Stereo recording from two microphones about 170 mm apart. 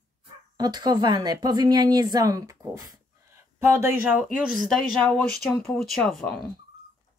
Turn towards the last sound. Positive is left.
turn(degrees=0)  # may be behind; listen again after turning